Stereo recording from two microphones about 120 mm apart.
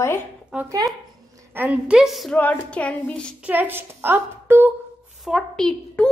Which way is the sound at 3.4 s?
15° right (ahead or behind).